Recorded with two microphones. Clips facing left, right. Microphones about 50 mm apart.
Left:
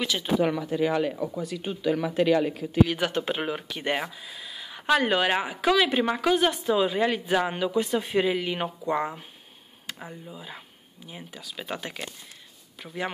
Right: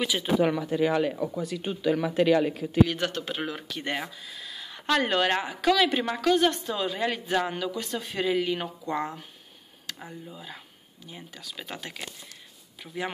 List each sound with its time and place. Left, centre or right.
0.0 s speech: centre
0.4 s speech: right
1.9 s speech: right
2.9 s speech: centre
3.2 s speech: left; by 13.1 s centre